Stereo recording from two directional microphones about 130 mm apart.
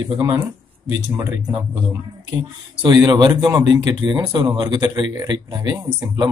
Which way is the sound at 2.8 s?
35° right (ahead or behind).